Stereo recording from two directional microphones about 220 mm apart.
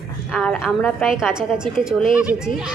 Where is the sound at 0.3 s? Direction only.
Centre (ahead or behind).